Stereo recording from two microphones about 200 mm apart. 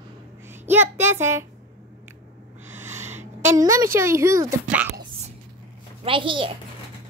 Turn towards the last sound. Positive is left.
turn(degrees=-25)  # may be behind; listen again after turning